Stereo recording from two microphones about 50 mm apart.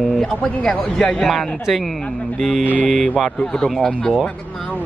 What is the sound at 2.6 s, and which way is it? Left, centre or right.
Speech, right.